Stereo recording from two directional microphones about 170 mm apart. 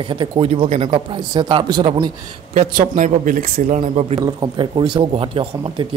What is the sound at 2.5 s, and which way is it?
Speech, 50° right (ahead or behind).